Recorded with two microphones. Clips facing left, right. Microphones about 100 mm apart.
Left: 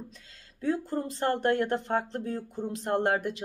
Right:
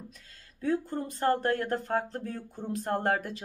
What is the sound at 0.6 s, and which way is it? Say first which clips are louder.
Speech: left 1 dB; 30° left (ahead or behind).